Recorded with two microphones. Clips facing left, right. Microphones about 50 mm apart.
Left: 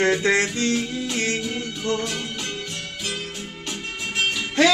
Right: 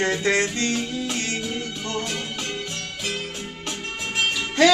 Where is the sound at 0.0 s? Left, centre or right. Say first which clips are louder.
Left 2 dB; left.